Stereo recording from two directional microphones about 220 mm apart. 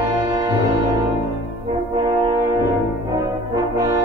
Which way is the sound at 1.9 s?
20° right (ahead or behind).